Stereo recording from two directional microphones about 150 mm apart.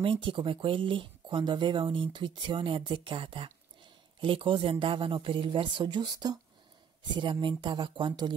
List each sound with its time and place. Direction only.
0.0 s speech: 35° right (ahead or behind)